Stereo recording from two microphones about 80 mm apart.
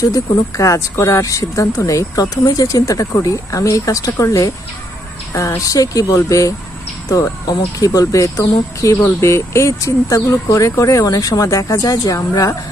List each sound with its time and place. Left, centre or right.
0.0 s speech: left